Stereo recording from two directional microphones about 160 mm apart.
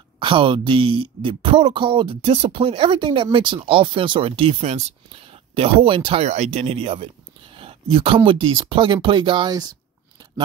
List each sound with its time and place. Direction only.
0.2 s speech: 30° right (ahead or behind)